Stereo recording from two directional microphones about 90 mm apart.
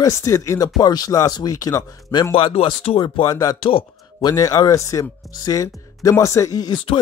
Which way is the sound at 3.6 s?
80° left.